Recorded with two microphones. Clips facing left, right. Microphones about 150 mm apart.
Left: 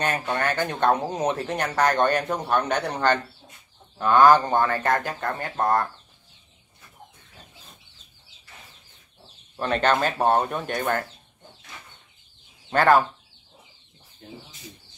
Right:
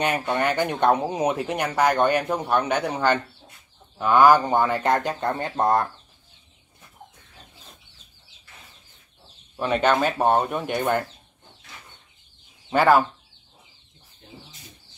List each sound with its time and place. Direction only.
0.0 s speech: 15° right (ahead or behind)
9.6 s speech: 10° right (ahead or behind)
10.7 s speech: 20° right (ahead or behind)
12.6 s speech: 10° right (ahead or behind)